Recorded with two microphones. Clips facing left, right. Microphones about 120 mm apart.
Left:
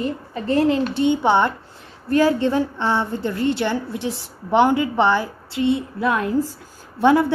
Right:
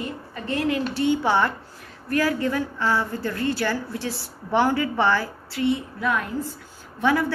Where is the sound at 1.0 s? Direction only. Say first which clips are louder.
Left 2 dB; 20° left (ahead or behind).